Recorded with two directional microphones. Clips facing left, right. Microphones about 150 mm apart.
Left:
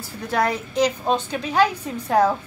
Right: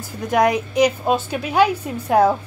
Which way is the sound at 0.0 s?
15° right (ahead or behind).